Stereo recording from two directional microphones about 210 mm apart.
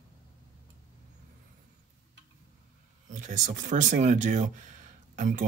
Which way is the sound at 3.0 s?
35° right (ahead or behind).